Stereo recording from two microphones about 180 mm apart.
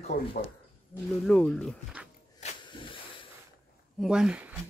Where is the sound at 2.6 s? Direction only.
25° left (ahead or behind).